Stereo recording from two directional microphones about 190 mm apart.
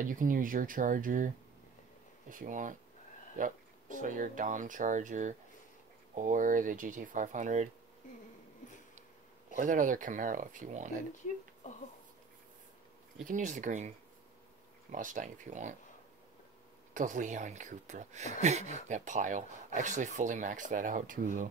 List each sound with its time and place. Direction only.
0.0 s speech: 45° right (ahead or behind)
9.6 s speech: 45° right (ahead or behind)
13.3 s speech: 40° right (ahead or behind)
16.9 s speech: 40° right (ahead or behind)